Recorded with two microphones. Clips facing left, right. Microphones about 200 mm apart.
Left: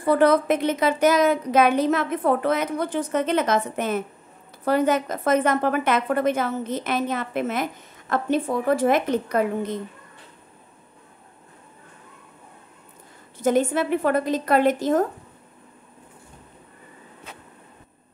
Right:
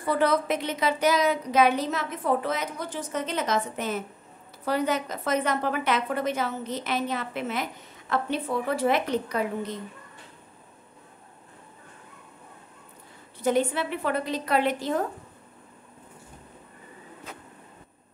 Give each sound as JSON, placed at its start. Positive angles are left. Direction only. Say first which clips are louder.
{"t": 0.0, "sound": "a woman's voice", "louder": "left 6 dB", "side_deg": 50}
{"t": 13.4, "sound": "a woman's voice", "louder": "left 4 dB", "side_deg": 45}